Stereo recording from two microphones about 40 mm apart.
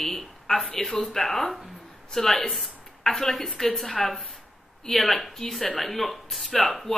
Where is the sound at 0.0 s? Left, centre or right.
Centre.